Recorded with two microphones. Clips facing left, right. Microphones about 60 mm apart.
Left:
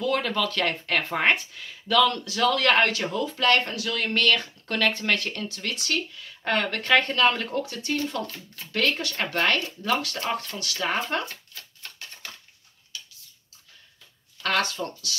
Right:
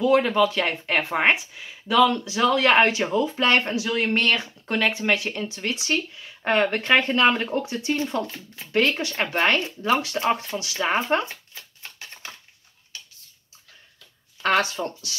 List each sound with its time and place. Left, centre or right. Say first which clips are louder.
0.0 s speech: right 7 dB; centre
11.5 s shuffling cards: right 1 dB; centre
14.4 s speech: right 4 dB; right